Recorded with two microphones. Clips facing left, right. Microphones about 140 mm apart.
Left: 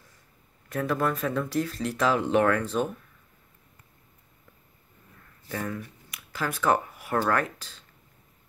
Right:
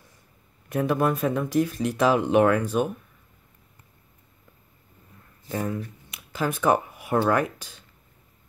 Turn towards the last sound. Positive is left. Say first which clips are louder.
# right 3 dB
turn(degrees=-15)  # may be behind; listen again after turning